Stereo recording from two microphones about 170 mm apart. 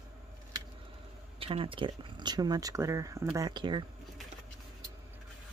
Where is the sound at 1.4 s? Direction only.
35° right (ahead or behind).